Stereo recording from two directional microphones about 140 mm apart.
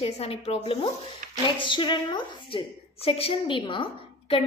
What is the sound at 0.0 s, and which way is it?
A woman's voice, 45° left (ahead or behind).